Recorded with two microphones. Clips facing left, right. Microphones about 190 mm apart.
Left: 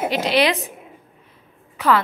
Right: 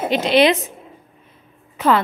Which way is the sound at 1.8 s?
20° right (ahead or behind).